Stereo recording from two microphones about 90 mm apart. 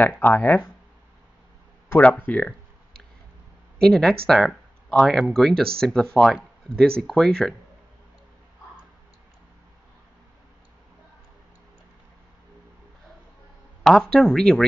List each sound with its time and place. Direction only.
0.2 s speech: 20° left (ahead or behind)
2.0 s speech: 15° left (ahead or behind)
3.8 s speech: 5° left (ahead or behind)
13.8 s speech: 5° left (ahead or behind)